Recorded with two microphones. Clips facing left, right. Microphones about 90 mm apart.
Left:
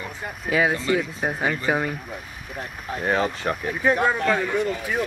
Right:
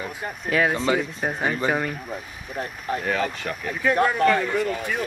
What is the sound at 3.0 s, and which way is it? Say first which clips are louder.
Speech: left 5 dB; 30° left (ahead or behind).